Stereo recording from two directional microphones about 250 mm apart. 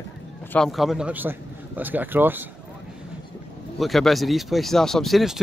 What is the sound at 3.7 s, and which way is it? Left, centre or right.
Speech, centre.